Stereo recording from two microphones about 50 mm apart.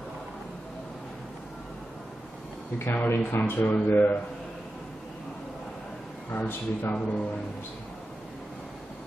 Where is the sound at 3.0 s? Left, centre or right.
Left.